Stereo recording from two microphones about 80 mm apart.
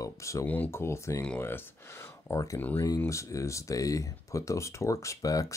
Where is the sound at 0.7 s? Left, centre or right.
Left.